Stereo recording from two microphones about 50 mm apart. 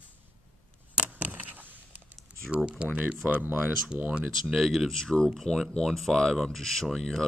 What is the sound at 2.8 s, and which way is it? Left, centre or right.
Speech, right.